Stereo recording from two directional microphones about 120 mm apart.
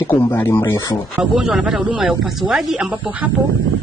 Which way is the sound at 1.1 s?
10° right (ahead or behind).